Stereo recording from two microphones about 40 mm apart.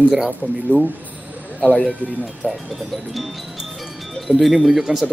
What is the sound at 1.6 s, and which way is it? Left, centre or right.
Speech, left.